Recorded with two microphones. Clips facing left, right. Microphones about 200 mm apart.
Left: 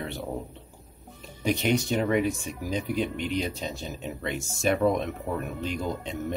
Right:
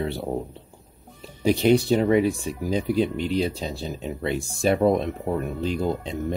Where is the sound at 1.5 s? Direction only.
35° right (ahead or behind).